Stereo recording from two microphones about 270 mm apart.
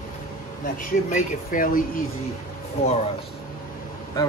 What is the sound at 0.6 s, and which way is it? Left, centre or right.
Speech, left.